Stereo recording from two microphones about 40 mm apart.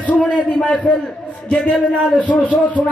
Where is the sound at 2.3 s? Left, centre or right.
Left.